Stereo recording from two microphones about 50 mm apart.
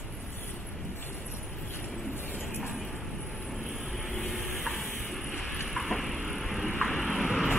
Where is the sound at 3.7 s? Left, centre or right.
Centre.